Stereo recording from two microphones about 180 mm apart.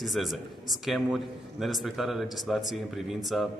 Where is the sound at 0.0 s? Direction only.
Centre (ahead or behind).